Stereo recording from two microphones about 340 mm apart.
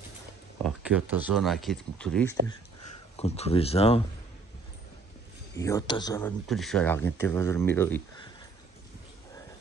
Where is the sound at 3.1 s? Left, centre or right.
Centre.